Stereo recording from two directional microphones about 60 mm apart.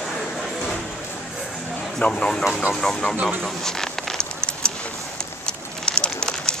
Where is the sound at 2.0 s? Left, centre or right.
Centre.